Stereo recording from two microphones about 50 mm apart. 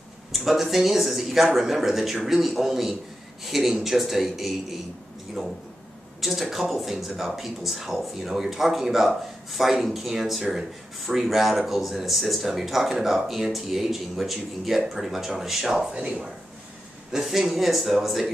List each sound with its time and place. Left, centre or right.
0.3 s speech: centre
15.9 s speech: right
17.1 s speech: centre